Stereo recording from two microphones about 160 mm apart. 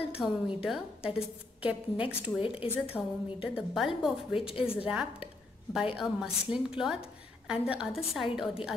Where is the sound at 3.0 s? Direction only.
Centre (ahead or behind).